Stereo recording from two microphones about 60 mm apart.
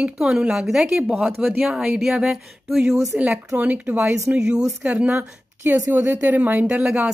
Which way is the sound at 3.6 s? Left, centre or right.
Right.